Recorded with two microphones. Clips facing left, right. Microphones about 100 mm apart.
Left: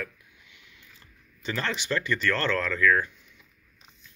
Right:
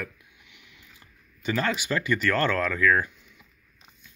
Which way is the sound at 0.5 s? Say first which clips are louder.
Right 2 dB; 15° right (ahead or behind).